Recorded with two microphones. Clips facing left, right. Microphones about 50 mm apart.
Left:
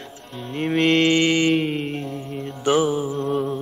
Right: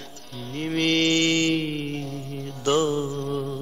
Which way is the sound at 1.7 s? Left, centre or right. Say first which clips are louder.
Left 3 dB; centre.